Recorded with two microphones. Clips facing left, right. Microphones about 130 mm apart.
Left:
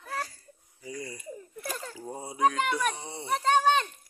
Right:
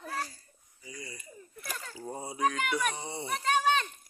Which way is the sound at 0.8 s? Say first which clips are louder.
Left 7 dB; 50° left (ahead or behind).